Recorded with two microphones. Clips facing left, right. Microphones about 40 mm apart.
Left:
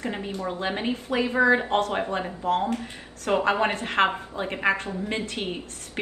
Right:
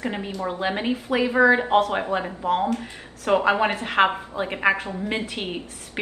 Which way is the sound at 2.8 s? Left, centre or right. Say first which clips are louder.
Right 2 dB; right.